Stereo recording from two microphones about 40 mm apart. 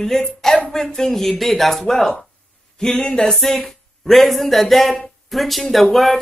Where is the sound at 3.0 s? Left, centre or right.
Centre.